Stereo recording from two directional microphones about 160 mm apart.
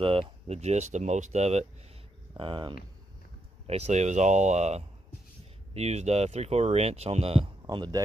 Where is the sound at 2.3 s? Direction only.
30° right (ahead or behind).